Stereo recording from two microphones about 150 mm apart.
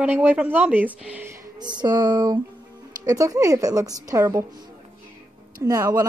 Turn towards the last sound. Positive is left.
turn(degrees=-25)  # may be behind; listen again after turning